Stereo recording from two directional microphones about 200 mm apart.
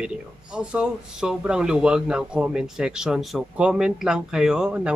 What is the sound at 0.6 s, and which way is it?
Speech, 5° right (ahead or behind).